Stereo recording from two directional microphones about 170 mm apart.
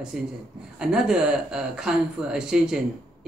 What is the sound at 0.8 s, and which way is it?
Speech, 5° right (ahead or behind).